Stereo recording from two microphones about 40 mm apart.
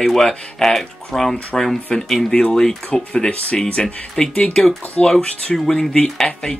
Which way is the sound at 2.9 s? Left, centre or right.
Left.